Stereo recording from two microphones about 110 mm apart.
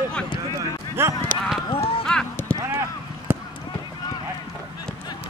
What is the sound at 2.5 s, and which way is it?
Clip-clop, 25° right (ahead or behind).